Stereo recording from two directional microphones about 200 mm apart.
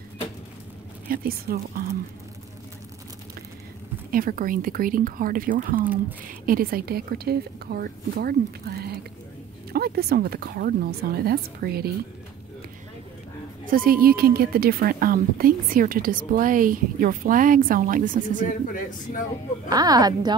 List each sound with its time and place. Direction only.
1.0 s a woman's voice: 45° right (ahead or behind)
4.1 s a woman's voice: 45° right (ahead or behind)
13.7 s a woman's voice: 45° right (ahead or behind)
18.5 s speech: 40° left (ahead or behind)
19.7 s a woman's voice: 20° right (ahead or behind)